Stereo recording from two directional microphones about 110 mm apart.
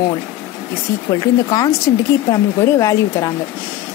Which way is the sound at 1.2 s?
35° left (ahead or behind).